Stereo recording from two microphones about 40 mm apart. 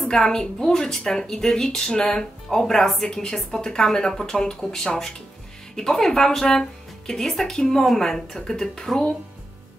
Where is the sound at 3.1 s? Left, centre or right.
Centre.